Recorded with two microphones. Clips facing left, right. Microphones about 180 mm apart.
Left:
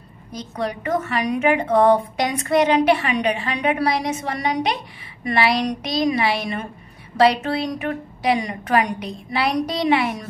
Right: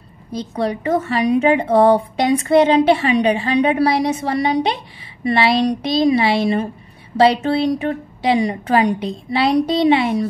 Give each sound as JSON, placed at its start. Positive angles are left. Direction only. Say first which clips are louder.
{"t": 0.3, "sound": "a woman's voice", "louder": "right 5 dB", "side_deg": -30}